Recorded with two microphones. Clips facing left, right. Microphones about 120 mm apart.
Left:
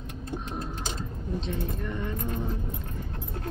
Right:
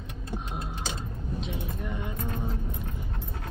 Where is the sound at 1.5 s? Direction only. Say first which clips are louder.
Left 3 dB; 10° right (ahead or behind).